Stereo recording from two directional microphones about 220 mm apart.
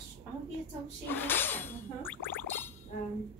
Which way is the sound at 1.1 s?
10° left (ahead or behind).